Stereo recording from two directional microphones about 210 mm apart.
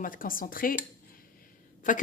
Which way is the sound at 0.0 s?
40° left (ahead or behind).